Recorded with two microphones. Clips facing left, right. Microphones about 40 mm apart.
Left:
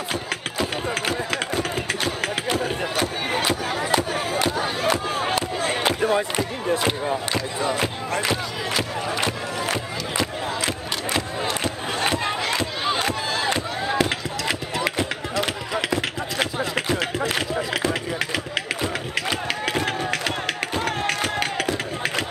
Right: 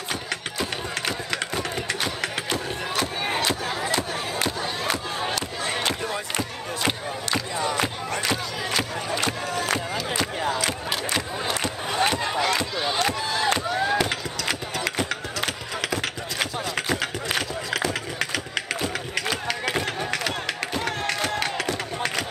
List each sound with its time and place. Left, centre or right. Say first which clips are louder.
0.1 s run: even; centre
3.0 s music: even; centre
4.4 s crowd: left 4 dB; centre
5.6 s music: left 3 dB; centre
5.9 s music: left 6 dB; left
11.4 s crowd: left 1 dB; centre
12.8 s chop: left 1 dB; centre
14.0 s a sound: left 2 dB; centre
17.4 s run: left 2 dB; centre
20.8 s a sound: left 2 dB; centre